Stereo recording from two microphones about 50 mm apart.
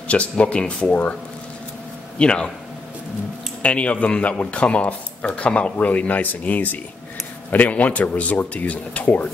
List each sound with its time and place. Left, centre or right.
0.1 s speech: left
2.1 s speech: centre
3.6 s speech: left